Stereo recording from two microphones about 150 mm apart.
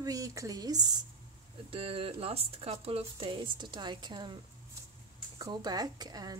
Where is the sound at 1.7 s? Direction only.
40° right (ahead or behind).